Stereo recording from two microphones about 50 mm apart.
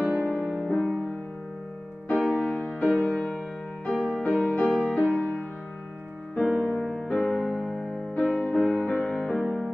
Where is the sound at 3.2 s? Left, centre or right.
Left.